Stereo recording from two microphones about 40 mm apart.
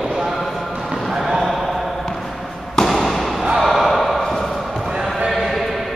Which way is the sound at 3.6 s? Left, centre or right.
Centre.